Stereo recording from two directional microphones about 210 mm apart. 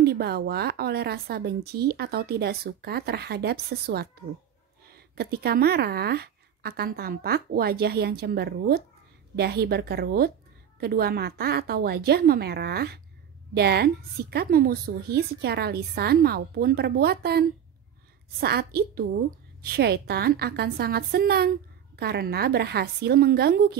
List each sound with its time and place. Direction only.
0.0 s speech: 50° right (ahead or behind)